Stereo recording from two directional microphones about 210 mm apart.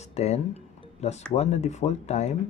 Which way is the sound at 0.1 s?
30° left (ahead or behind).